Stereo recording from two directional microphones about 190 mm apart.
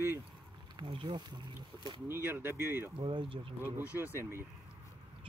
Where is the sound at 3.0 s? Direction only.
25° right (ahead or behind).